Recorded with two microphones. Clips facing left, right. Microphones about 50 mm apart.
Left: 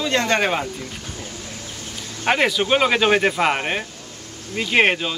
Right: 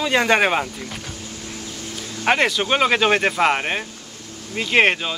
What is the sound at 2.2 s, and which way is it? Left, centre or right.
Speech, centre.